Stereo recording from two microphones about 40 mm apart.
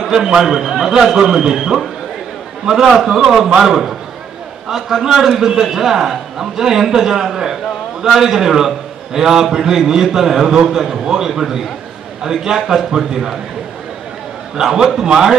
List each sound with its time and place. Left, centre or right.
0.1 s a man's voice: centre
14.6 s a man's voice: centre